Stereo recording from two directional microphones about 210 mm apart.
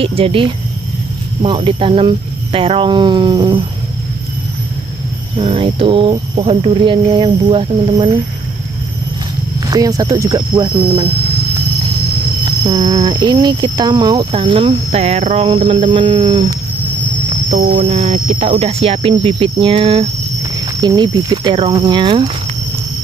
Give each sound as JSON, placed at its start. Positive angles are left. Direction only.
{"t": 0.0, "sound": "speech", "side_deg": -25}
{"t": 5.4, "sound": "speech", "side_deg": -25}
{"t": 9.7, "sound": "speech", "side_deg": -15}
{"t": 12.6, "sound": "speech", "side_deg": -20}
{"t": 17.3, "sound": "a sound", "side_deg": -35}
{"t": 17.6, "sound": "speech", "side_deg": -30}